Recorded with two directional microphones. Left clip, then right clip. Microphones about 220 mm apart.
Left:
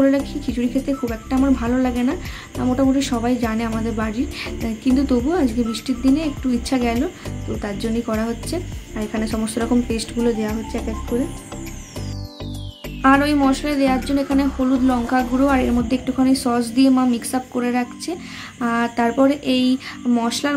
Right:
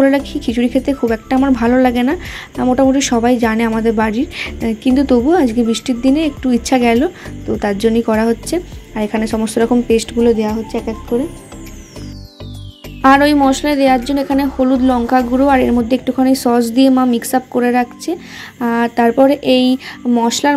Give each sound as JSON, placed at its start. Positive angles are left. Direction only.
{"t": 0.5, "sound": "speech", "side_deg": -25}
{"t": 13.0, "sound": "speech", "side_deg": -25}